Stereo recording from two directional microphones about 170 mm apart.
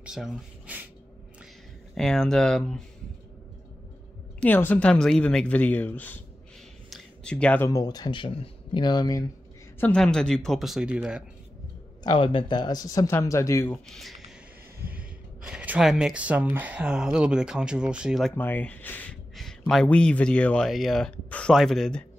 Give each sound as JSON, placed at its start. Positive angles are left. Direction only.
{"t": 0.0, "sound": "speech", "side_deg": -5}
{"t": 2.0, "sound": "speech", "side_deg": 5}
{"t": 4.4, "sound": "speech", "side_deg": 10}
{"t": 9.8, "sound": "speech", "side_deg": 5}
{"t": 12.0, "sound": "speech", "side_deg": 30}
{"t": 13.8, "sound": "speech", "side_deg": 0}
{"t": 18.3, "sound": "speech", "side_deg": 10}